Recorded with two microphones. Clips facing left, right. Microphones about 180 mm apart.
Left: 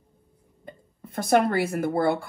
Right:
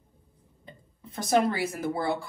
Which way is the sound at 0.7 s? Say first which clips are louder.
Left 5 dB; 55° left (ahead or behind).